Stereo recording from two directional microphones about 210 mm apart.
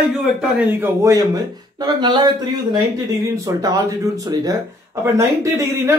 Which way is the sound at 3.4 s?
15° right (ahead or behind).